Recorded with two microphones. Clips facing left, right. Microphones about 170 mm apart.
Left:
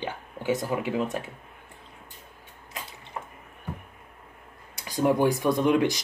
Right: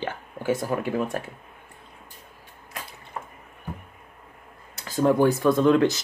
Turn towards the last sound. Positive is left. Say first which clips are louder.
# right 4 dB
turn(degrees=15)  # may be behind; listen again after turning